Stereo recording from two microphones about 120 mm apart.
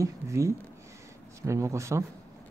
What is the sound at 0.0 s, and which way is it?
Speech, 25° right (ahead or behind).